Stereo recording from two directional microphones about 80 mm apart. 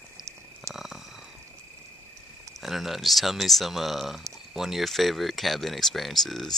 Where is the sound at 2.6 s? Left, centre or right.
Centre.